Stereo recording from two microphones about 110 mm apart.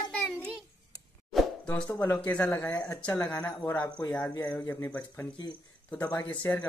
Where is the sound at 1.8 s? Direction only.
20° left (ahead or behind).